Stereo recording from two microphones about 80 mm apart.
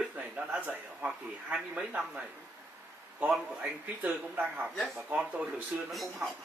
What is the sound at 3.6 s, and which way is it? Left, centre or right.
Speech, centre.